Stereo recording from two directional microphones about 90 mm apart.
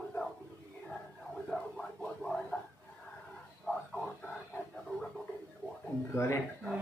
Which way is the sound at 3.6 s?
Centre (ahead or behind).